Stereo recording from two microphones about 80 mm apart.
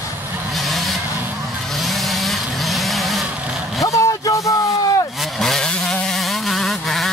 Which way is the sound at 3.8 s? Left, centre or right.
Left.